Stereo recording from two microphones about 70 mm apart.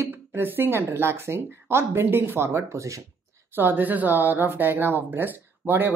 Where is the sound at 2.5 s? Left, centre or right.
Right.